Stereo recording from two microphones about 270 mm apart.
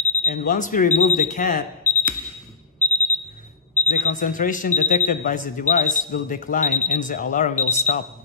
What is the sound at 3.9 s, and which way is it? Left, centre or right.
Speech, left.